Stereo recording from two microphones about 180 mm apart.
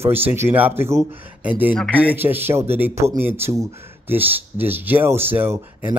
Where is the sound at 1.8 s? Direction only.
5° left (ahead or behind).